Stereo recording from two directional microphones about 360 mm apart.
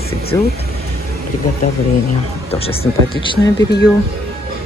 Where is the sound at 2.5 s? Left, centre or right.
Centre.